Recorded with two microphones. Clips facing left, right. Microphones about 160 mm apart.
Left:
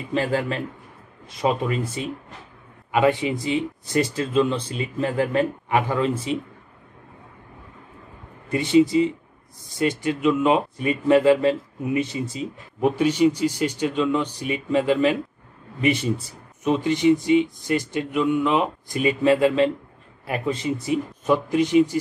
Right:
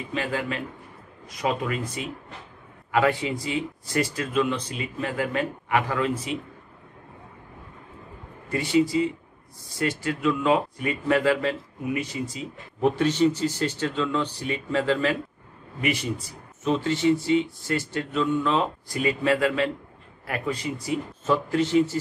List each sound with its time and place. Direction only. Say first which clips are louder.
0.1 s speech: left 6 dB; 35° left (ahead or behind)
8.5 s speech: left 5 dB; 20° left (ahead or behind)
12.8 s speech: left 2 dB; 10° left (ahead or behind); by 16.3 s 25° left (ahead or behind)
16.6 s speech: left 3 dB; 15° left (ahead or behind)